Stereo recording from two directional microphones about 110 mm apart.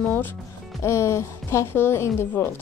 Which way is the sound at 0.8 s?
25° left (ahead or behind).